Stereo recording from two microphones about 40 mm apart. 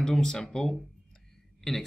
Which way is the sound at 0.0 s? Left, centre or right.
Centre.